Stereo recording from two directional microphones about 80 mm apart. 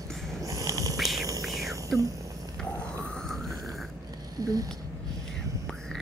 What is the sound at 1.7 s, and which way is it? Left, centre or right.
Whispering, right.